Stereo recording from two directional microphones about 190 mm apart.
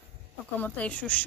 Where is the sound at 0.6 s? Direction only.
5° left (ahead or behind).